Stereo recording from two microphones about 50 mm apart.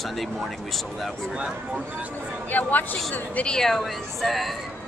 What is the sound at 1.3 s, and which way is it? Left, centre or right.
Speech, right.